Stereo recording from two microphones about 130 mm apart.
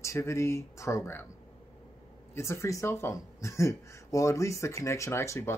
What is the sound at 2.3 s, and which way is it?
Speech, 20° left (ahead or behind).